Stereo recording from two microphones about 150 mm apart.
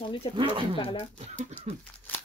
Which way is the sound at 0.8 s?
35° left (ahead or behind).